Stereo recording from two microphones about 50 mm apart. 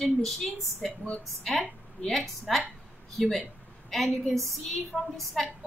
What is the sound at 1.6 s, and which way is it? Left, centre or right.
Speech, centre.